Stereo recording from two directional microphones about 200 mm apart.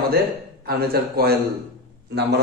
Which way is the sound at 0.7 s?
50° right (ahead or behind).